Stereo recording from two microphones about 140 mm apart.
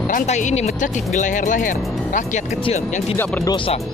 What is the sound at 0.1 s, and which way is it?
Speech, 60° left (ahead or behind).